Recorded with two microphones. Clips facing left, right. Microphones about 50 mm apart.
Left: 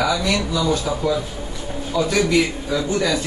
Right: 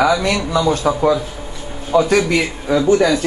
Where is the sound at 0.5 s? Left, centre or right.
Right.